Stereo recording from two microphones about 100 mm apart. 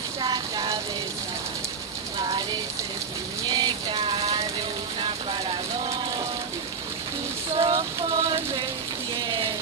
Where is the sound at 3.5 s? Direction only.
45° right (ahead or behind).